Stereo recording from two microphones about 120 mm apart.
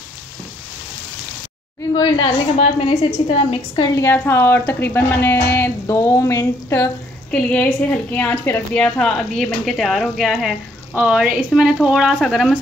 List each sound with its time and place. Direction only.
2.0 s a woman's voice: 40° left (ahead or behind)
2.6 s a woman's voice: 60° left (ahead or behind)
3.9 s speech: 20° left (ahead or behind)
7.2 s a woman's voice: 10° left (ahead or behind)
8.8 s speech: 5° left (ahead or behind)